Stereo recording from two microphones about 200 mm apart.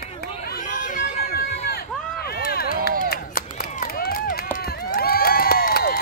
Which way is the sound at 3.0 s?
45° left (ahead or behind).